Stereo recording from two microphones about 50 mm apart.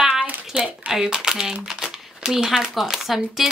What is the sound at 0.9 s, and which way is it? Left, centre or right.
A child's voice, centre.